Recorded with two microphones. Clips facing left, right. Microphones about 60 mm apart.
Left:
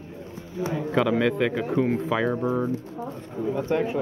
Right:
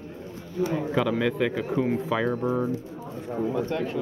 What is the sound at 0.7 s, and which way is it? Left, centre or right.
Speech, centre.